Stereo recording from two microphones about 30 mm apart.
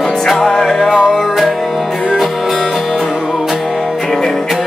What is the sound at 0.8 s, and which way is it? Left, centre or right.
Music, centre.